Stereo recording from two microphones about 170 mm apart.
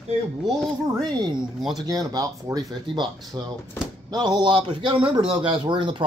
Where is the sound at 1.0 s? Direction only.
25° right (ahead or behind).